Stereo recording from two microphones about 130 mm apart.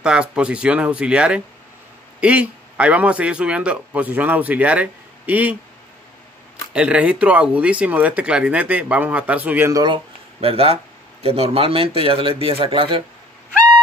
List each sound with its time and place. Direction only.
0.0 s speech: 5° right (ahead or behind)
6.7 s speech: 10° right (ahead or behind)
9.7 s speech: 25° right (ahead or behind)
9.9 s speech: 45° right (ahead or behind)